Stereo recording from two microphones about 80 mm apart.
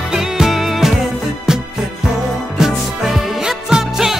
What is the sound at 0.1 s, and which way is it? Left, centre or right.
Music, centre.